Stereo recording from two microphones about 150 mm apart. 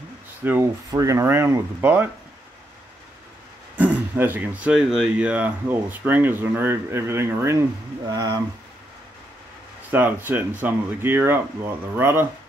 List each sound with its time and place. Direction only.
0.4 s speech: 15° right (ahead or behind)
0.8 s speech: 25° right (ahead or behind)
3.7 s speech: 10° right (ahead or behind)
9.8 s speech: 10° right (ahead or behind)